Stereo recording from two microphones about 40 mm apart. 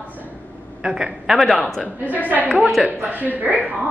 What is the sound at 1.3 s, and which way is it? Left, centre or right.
Speech, centre.